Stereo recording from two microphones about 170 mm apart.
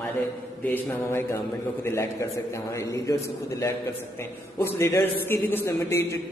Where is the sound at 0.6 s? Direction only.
15° left (ahead or behind).